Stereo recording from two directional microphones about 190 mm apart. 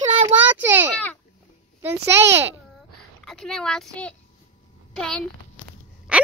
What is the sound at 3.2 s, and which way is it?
A child's voice, 5° left (ahead or behind).